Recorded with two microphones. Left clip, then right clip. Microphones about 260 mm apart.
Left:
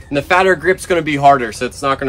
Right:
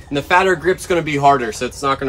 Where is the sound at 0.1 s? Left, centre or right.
Centre.